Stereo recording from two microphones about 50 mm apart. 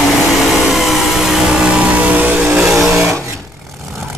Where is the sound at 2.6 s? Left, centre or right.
Centre.